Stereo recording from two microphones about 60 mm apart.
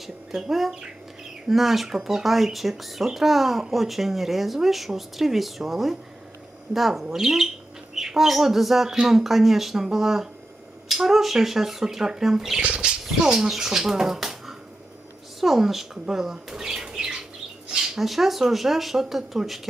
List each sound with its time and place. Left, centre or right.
0.0 s speech: centre
12.6 s speech: centre